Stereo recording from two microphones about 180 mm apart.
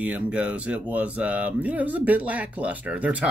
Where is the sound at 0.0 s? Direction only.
10° right (ahead or behind).